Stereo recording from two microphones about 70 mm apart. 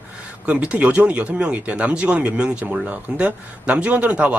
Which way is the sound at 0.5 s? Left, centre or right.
Centre.